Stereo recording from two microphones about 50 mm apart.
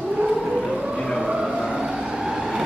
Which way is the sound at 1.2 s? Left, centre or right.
Centre.